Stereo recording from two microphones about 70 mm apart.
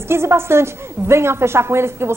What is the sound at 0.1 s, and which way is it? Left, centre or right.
A woman's voice, right.